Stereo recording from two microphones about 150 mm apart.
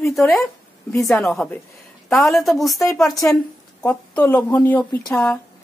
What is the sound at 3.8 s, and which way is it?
Speech, 10° left (ahead or behind).